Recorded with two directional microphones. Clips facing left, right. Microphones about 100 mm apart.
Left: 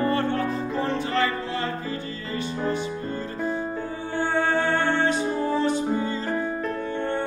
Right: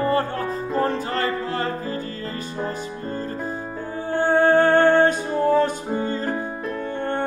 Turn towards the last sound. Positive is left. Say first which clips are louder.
# right 4 dB
turn(degrees=-45)  # may be behind; listen again after turning